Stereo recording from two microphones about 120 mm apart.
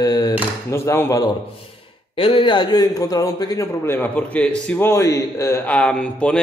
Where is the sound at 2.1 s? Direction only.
45° left (ahead or behind); by 3.6 s 30° left (ahead or behind).